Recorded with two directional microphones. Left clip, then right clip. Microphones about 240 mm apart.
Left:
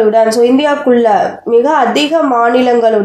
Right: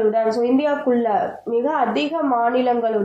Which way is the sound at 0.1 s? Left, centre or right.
Left.